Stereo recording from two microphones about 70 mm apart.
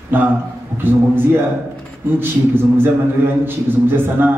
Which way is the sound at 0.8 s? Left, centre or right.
Right.